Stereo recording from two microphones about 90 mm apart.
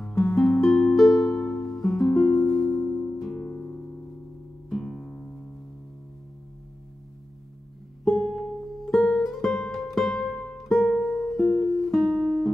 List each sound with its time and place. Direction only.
0.1 s music: 35° left (ahead or behind)
0.4 s music: 5° left (ahead or behind)
4.6 s music: 5° left (ahead or behind)
8.0 s music: centre (ahead or behind)